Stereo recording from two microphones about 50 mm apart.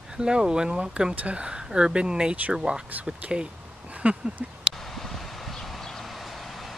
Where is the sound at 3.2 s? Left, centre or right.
Right.